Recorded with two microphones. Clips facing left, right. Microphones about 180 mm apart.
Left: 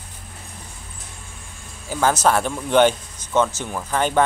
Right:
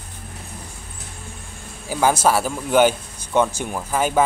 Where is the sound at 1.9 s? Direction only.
10° right (ahead or behind).